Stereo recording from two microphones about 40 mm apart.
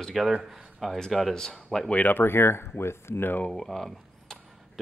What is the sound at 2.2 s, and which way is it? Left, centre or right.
Speech, left.